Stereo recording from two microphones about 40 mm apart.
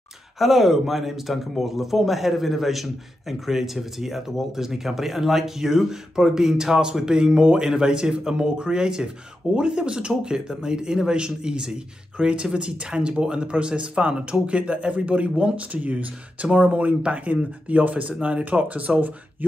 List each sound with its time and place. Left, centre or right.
0.4 s a man's voice: centre; by 19.1 s right